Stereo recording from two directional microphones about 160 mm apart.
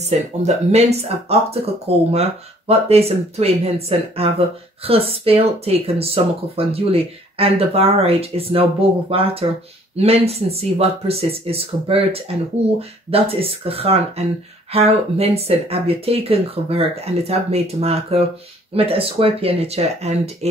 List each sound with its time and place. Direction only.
0.0 s speech: 45° right (ahead or behind)